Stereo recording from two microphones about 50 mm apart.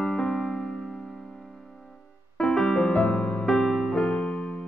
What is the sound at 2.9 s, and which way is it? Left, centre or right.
Music, left.